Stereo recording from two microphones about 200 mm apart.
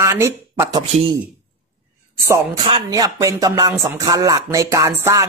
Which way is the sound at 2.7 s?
25° right (ahead or behind).